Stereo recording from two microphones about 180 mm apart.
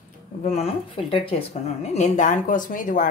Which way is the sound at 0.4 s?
35° left (ahead or behind).